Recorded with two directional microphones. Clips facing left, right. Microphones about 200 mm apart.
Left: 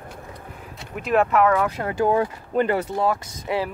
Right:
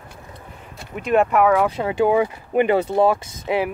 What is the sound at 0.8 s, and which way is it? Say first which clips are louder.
Speech: right 2 dB; centre (ahead or behind).